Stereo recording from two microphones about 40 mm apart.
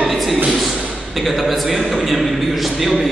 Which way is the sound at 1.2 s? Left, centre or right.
Centre.